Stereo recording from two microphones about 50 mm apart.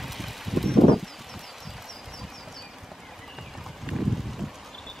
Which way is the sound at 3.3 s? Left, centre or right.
Centre.